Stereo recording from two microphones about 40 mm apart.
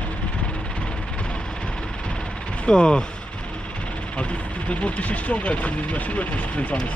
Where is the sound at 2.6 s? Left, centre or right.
Left.